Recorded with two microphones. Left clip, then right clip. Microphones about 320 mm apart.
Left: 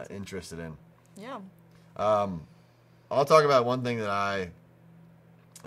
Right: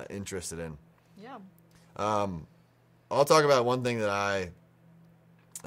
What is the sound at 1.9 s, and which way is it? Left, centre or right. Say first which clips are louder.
A man's voice: left 4 dB; right.